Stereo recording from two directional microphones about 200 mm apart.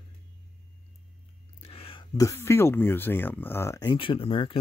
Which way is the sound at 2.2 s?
15° left (ahead or behind).